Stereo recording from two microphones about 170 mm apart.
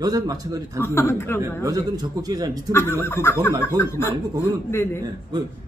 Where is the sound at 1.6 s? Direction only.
20° right (ahead or behind).